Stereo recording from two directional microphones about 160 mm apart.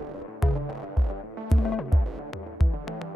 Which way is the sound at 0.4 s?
Centre (ahead or behind).